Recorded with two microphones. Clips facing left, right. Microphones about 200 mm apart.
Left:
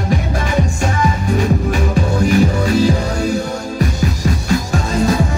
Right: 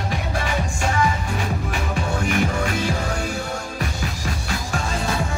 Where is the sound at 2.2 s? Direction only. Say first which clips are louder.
Left 9 dB; 35° left (ahead or behind).